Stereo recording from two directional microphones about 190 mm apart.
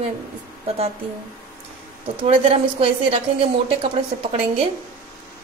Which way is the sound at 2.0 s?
30° right (ahead or behind).